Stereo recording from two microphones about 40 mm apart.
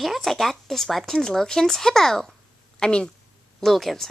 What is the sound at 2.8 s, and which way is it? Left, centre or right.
Speech, left.